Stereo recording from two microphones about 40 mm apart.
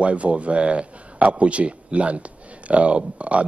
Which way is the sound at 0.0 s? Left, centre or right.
Right.